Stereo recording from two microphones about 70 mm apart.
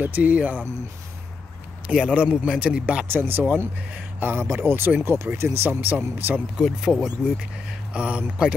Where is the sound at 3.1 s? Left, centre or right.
Right.